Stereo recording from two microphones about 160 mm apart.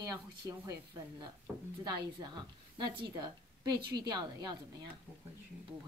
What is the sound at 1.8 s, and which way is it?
A woman's voice, 25° right (ahead or behind).